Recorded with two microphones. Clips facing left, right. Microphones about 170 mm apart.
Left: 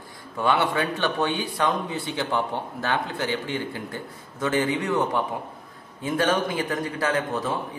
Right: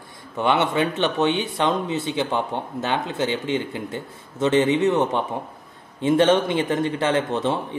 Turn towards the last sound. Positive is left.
turn(degrees=-25)  # may be behind; listen again after turning